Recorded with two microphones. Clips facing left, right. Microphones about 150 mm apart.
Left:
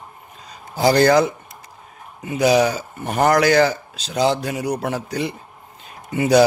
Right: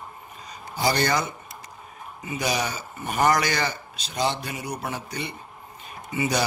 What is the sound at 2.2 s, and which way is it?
Speech, 70° left (ahead or behind).